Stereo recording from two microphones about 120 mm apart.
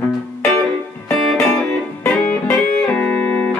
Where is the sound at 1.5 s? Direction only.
10° left (ahead or behind).